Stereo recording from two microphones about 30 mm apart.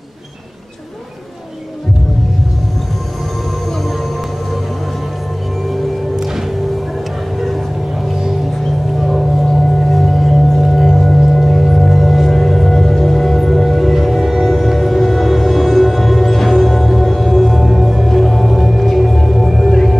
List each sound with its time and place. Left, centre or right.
9.0 s singing bowl: centre
14.4 s music: centre
18.8 s music: centre